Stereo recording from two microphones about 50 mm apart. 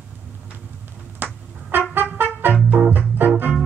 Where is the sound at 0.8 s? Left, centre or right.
Right.